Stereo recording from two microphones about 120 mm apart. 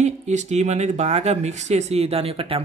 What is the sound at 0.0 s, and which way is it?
Speech, 70° right (ahead or behind).